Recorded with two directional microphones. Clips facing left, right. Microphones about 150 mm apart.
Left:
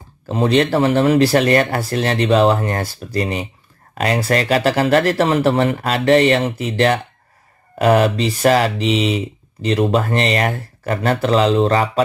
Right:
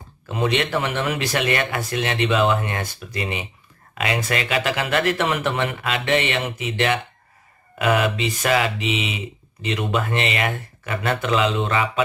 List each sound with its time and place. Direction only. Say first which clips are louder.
0.3 s speech: left 6 dB; 35° left (ahead or behind)
8.8 s speech: left 8 dB; 5° right (ahead or behind)
9.1 s speech: left 10 dB; 35° left (ahead or behind)